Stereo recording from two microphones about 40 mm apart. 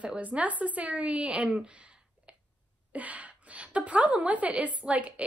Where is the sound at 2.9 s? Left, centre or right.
Right.